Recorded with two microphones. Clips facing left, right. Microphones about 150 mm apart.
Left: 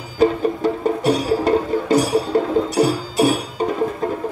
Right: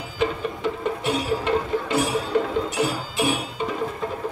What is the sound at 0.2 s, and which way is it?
Music, 40° left (ahead or behind).